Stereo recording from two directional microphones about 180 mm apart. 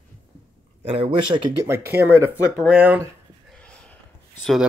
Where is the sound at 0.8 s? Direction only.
30° right (ahead or behind).